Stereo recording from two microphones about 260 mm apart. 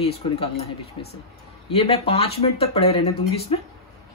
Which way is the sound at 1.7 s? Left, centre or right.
Left.